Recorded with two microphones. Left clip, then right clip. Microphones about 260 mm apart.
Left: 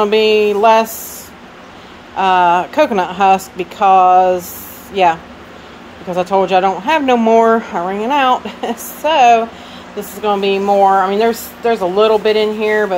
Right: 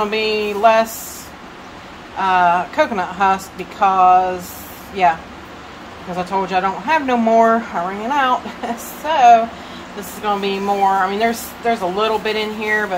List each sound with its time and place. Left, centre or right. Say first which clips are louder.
0.0 s speech: left 7 dB; left
2.1 s speech: left 3 dB; left
6.1 s speech: left 6 dB; left